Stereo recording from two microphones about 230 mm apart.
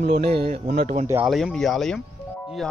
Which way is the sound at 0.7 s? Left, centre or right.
Right.